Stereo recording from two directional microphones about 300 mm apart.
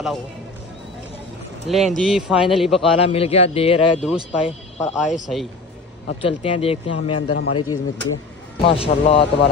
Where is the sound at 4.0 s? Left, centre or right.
Centre.